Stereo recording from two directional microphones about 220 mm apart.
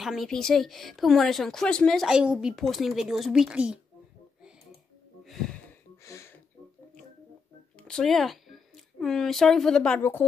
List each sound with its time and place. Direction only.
0.0 s speech: centre (ahead or behind)
5.2 s wheeze: centre (ahead or behind)
6.0 s music: 10° left (ahead or behind)
7.7 s speech: 5° left (ahead or behind)